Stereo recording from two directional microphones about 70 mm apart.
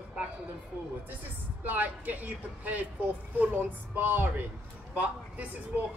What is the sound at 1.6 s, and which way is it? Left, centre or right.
Speech, right.